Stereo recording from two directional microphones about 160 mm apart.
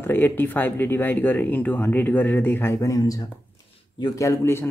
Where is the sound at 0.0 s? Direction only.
15° left (ahead or behind).